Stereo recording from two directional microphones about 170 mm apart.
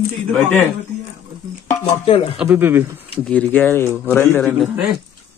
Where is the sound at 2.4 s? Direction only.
10° right (ahead or behind).